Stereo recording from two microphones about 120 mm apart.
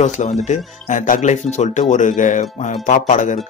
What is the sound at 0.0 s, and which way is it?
Speech, 80° left.